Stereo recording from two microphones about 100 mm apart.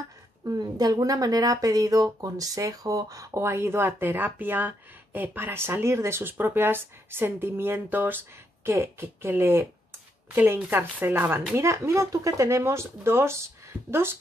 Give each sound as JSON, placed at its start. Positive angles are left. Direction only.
{"t": 0.5, "sound": "speech", "side_deg": -40}